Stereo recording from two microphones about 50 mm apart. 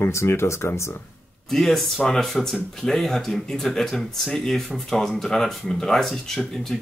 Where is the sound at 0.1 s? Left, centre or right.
Left.